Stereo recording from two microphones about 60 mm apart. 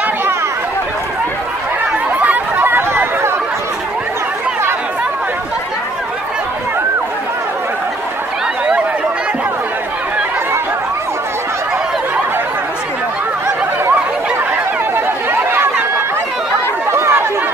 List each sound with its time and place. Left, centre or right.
2.1 s chatter: right
2.6 s chatter: right
16.9 s chatter: right